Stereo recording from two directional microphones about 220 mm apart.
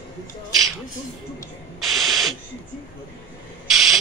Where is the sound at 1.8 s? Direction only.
Centre (ahead or behind).